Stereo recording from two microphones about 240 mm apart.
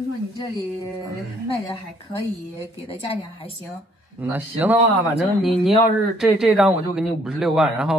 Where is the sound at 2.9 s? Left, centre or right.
Left.